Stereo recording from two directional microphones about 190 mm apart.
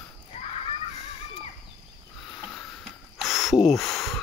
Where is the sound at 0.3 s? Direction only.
30° left (ahead or behind).